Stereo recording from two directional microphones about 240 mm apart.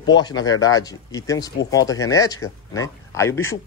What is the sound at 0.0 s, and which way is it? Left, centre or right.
Speech, centre.